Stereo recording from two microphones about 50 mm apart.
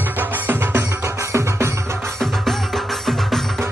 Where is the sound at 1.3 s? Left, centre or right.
Right.